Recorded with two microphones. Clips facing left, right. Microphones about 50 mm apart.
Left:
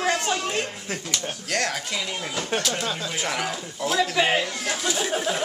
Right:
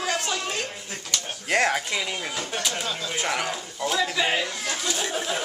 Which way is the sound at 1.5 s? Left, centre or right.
Centre.